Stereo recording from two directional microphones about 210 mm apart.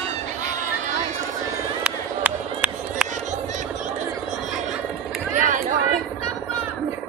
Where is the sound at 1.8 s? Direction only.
5° right (ahead or behind).